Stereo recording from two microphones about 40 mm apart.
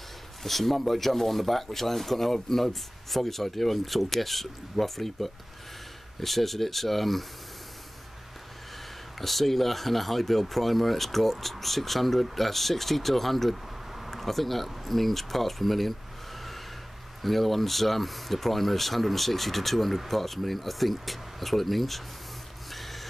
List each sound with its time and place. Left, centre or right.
0.4 s speech: centre
9.2 s speech: centre
17.2 s speech: centre
22.7 s a sound: centre